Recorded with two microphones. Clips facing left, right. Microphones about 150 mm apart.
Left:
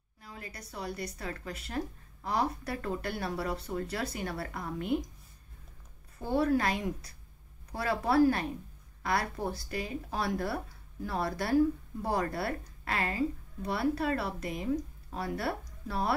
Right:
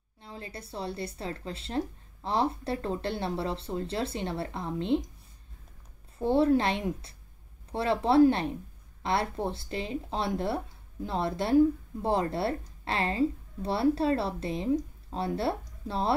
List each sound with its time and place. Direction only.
0.2 s speech: 30° right (ahead or behind)
6.1 s speech: 25° right (ahead or behind)